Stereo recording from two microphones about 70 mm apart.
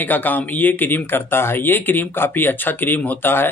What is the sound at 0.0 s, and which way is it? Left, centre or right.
Speech, left.